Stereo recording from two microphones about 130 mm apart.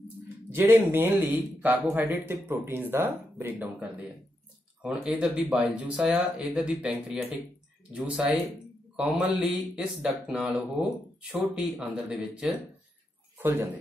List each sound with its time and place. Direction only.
0.5 s speech: 15° right (ahead or behind)
4.8 s speech: 5° right (ahead or behind)
13.4 s speech: 15° right (ahead or behind)